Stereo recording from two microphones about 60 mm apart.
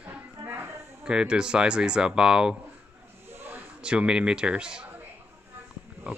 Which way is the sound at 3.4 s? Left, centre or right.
Right.